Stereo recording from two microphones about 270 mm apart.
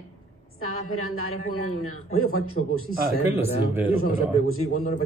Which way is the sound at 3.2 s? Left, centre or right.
Centre.